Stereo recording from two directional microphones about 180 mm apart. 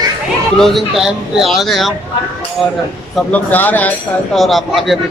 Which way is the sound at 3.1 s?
10° left (ahead or behind).